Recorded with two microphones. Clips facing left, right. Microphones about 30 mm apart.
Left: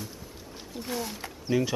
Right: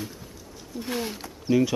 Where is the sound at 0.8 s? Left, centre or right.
Right.